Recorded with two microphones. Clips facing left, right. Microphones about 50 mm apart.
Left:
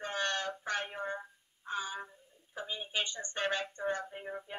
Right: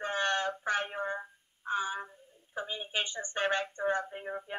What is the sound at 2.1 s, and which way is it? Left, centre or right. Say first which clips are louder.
A woman's voice: right 3 dB; centre.